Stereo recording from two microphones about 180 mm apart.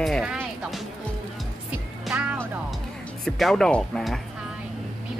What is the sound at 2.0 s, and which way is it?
Music, 5° right (ahead or behind).